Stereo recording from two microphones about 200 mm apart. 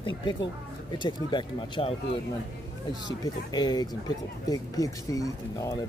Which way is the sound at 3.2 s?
20° left (ahead or behind).